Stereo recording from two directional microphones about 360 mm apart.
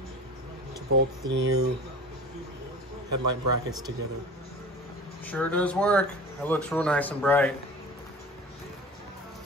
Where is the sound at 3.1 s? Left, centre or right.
Right.